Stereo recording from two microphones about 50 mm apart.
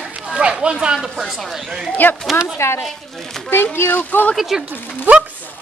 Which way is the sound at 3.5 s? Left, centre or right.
Left.